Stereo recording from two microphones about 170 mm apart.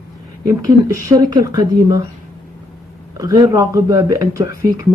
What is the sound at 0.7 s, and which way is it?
Speech, 20° right (ahead or behind).